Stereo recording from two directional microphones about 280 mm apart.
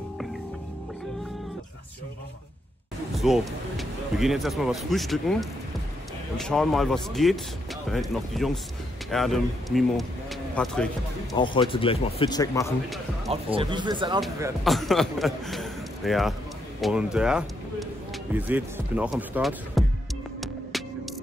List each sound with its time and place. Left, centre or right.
3.2 s speech: centre
11.3 s speech: centre
13.3 s speech: centre
14.6 s a man's voice: centre